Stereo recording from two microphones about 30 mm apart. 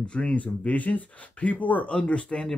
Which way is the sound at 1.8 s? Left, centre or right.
Left.